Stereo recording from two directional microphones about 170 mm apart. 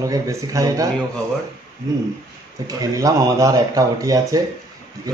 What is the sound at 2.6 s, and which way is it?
Speech, 20° right (ahead or behind).